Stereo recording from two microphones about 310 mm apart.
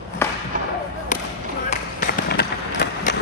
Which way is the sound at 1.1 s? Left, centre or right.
Left.